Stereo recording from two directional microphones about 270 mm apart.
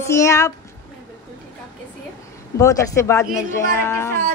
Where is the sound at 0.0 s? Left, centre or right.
Centre.